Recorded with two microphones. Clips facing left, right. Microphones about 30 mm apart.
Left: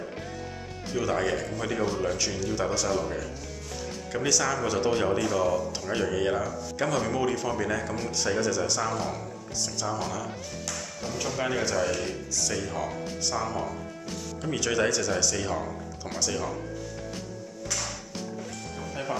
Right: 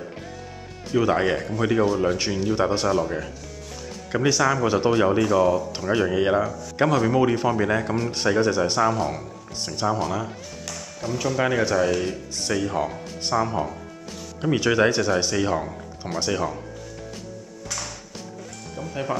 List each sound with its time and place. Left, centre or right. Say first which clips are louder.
0.9 s speech: right 6 dB; right
2.9 s speech: right 5 dB; right
9.8 s speech: right 9 dB; right
11.0 s speech: right 7 dB; centre
11.4 s speech: right 6 dB; right
12.3 s speech: right 5 dB; right